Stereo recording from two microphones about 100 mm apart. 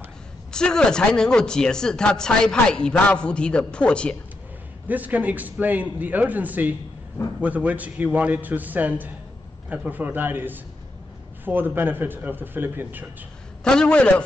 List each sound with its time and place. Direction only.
0.5 s speech: 10° left (ahead or behind)
4.8 s a man's voice: 15° right (ahead or behind)
13.7 s speech: 10° left (ahead or behind)